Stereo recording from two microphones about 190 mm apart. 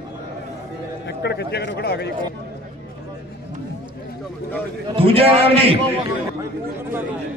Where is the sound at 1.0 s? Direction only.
60° left (ahead or behind).